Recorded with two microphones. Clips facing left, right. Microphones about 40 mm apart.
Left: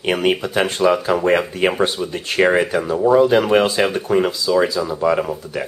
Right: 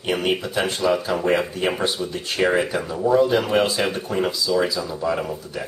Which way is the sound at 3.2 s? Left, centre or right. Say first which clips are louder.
Left 5 dB; left.